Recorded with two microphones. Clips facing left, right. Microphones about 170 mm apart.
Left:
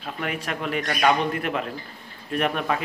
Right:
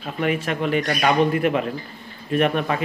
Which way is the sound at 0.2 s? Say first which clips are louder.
Right 7 dB; centre (ahead or behind).